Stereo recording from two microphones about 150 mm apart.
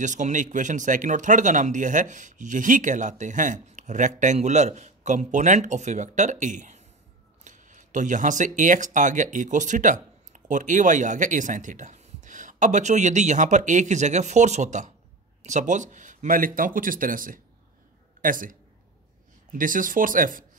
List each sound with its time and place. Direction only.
0.0 s speech: 55° right (ahead or behind)